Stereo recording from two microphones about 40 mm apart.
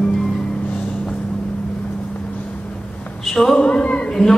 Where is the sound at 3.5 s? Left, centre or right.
Left.